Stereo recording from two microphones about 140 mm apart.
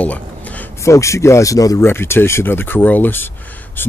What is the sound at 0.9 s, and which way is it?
Speech, 20° left (ahead or behind).